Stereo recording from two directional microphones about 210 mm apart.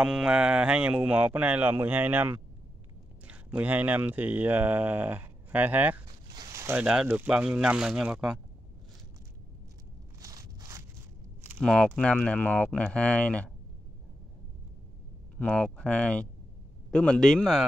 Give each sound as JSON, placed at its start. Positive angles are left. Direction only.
{"t": 0.0, "sound": "speech", "side_deg": -5}
{"t": 6.2, "sound": "speech", "side_deg": -20}
{"t": 10.2, "sound": "a sound", "side_deg": -15}
{"t": 11.5, "sound": "speech", "side_deg": 5}
{"t": 15.3, "sound": "speech", "side_deg": 5}